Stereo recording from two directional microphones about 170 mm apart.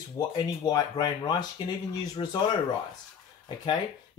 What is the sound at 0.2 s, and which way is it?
Speech, 20° left (ahead or behind).